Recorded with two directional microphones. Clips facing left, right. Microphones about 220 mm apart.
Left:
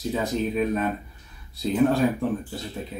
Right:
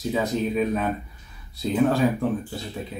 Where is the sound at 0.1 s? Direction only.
Centre (ahead or behind).